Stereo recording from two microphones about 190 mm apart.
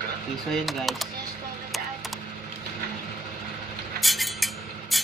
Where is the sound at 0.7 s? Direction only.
Centre (ahead or behind).